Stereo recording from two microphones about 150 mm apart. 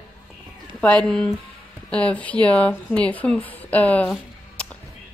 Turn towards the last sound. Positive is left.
turn(degrees=10)  # may be behind; listen again after turning